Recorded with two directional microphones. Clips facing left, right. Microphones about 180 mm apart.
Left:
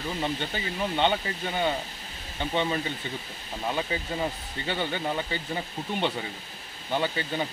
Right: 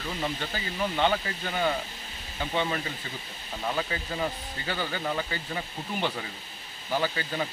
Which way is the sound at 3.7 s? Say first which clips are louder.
Left 3 dB; 25° left (ahead or behind).